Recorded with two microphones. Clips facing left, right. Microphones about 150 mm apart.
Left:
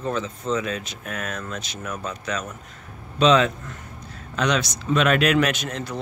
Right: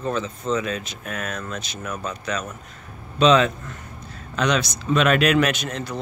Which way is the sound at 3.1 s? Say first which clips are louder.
Right 1 dB; centre (ahead or behind).